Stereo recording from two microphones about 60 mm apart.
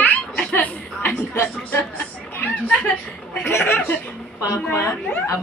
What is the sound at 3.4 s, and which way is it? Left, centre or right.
Speech, left.